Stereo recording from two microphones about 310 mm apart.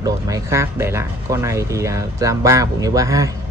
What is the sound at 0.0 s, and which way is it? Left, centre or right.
Speech, centre.